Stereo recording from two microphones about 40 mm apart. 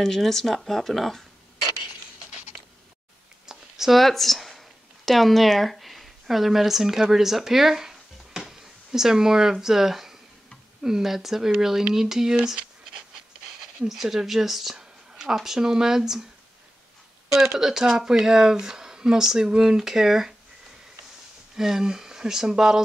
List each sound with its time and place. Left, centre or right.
0.0 s speech: centre
3.4 s a sound: centre
3.9 s speech: centre
13.7 s speech: centre
14.8 s a sound: centre
15.3 s speech: centre
17.3 s speech: centre
21.5 s speech: centre